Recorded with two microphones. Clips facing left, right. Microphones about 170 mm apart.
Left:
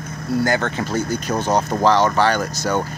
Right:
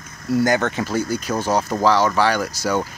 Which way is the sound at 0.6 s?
10° right (ahead or behind).